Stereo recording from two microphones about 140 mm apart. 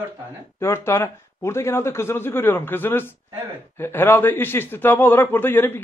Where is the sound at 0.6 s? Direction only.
20° left (ahead or behind).